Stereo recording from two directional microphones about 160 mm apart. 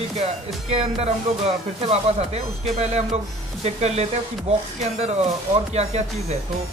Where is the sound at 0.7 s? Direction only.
40° right (ahead or behind).